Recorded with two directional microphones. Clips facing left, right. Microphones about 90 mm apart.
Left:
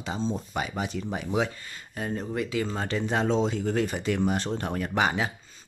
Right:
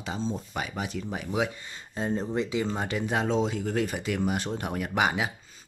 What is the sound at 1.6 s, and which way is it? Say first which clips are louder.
Speech: right 2 dB; 25° right (ahead or behind).